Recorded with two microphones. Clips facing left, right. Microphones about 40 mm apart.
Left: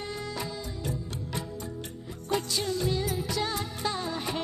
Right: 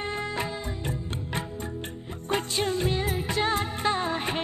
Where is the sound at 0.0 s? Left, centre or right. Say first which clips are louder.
Right 5 dB; right.